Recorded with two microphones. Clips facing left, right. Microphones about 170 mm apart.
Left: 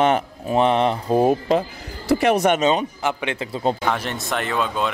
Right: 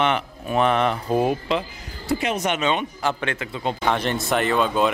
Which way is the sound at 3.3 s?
35° left (ahead or behind).